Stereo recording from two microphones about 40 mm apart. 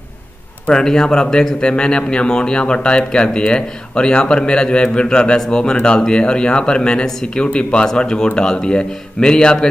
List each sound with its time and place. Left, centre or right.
0.7 s a man's voice: centre